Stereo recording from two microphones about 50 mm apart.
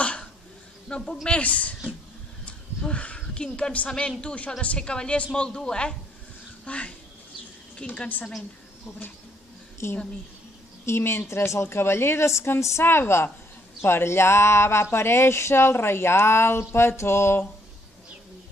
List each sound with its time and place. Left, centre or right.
0.0 s a sound: left
1.4 s speech: left
2.4 s a sound: left
4.2 s a woman's voice: centre
9.8 s speech: left
10.9 s speech: left
12.3 s speech: left
12.8 s a woman's voice: left